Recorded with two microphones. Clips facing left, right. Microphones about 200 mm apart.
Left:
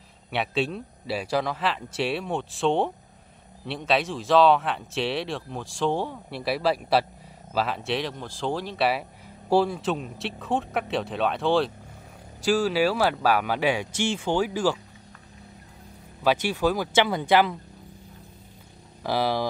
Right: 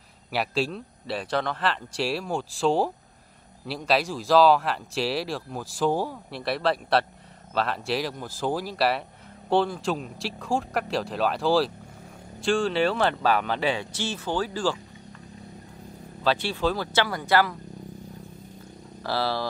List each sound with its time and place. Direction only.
0.3 s speech: centre (ahead or behind)
16.3 s speech: 10° left (ahead or behind)
19.0 s speech: 15° left (ahead or behind)